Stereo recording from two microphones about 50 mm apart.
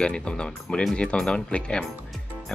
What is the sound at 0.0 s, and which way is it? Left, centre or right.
Speech, centre.